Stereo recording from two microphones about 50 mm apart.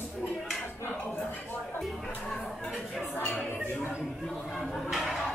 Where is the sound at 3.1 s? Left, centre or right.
Left.